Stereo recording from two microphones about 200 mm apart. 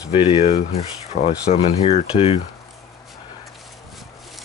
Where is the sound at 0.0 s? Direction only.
30° left (ahead or behind).